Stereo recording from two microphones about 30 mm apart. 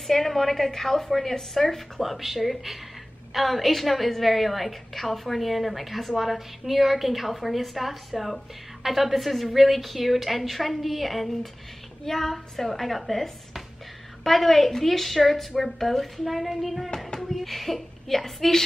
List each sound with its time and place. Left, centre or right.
0.0 s a woman's voice: centre
2.0 s a woman's voice: centre
12.0 s a woman's voice: centre
18.2 s a woman's voice: centre